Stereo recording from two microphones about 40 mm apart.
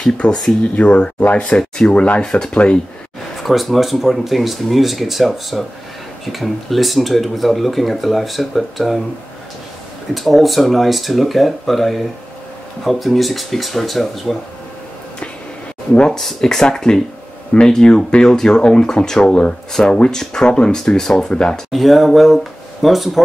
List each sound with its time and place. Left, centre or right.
0.2 s speech: centre
0.7 s speech: left
3.4 s speech: centre
10.1 s speech: centre
16.1 s speech: centre
21.7 s speech: centre